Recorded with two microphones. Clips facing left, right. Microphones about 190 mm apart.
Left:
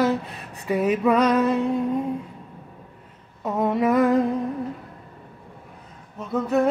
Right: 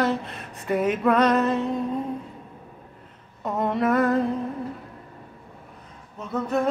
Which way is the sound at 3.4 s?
5° left (ahead or behind).